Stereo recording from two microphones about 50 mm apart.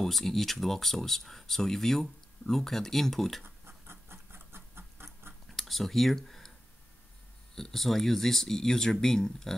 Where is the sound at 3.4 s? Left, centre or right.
Right.